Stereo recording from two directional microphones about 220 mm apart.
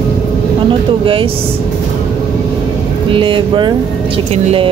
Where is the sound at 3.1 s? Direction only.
20° right (ahead or behind).